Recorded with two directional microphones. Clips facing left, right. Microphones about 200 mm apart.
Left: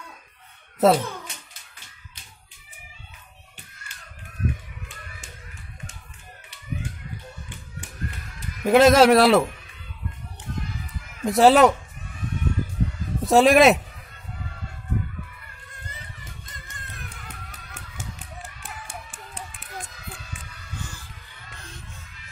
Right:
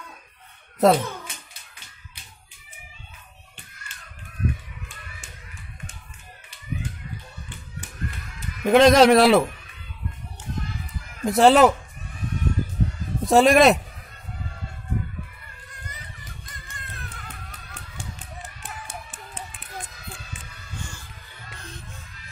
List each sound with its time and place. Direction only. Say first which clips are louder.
0.7 s a child's voice: even; centre (ahead or behind)
8.6 s a man's voice: even; 5° left (ahead or behind)
11.2 s a man's voice: even; centre (ahead or behind)
13.2 s speech: even; centre (ahead or behind)
16.6 s music: right 1 dB; 15° left (ahead or behind)